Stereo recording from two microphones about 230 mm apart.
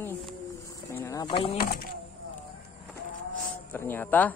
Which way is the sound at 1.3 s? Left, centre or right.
Left.